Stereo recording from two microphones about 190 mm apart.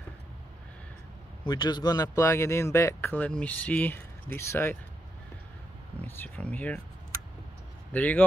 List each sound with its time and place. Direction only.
1.4 s speech: 25° left (ahead or behind)
5.9 s speech: 10° left (ahead or behind)
7.9 s speech: 10° left (ahead or behind)